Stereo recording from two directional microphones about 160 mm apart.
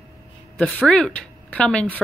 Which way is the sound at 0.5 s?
5° left (ahead or behind).